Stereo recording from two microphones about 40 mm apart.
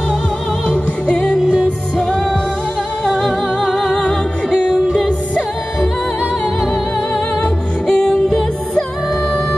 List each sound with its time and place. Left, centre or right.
1.0 s music: centre
4.0 s music: centre
7.8 s music: centre